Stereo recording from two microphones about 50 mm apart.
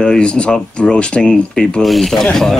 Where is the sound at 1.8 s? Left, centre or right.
Centre.